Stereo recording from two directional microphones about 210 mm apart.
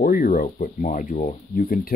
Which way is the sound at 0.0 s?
40° left (ahead or behind).